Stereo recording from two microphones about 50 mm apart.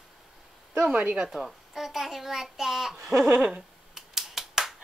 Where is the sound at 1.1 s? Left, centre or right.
Centre.